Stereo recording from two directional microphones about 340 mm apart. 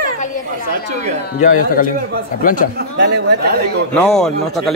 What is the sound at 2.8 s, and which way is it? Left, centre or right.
Speech, right.